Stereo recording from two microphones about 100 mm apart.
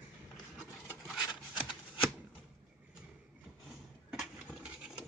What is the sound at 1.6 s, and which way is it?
Shuffling cards, 55° left (ahead or behind).